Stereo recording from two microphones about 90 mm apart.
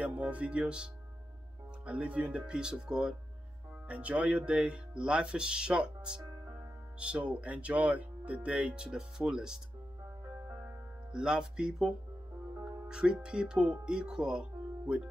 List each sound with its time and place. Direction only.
0.0 s speech: 15° right (ahead or behind)
1.9 s speech: 15° right (ahead or behind)
11.1 s speech: 10° right (ahead or behind)